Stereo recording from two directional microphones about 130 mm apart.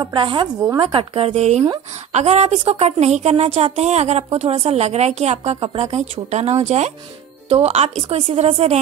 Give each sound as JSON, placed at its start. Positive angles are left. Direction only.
{"t": 0.0, "sound": "a woman's voice", "side_deg": -40}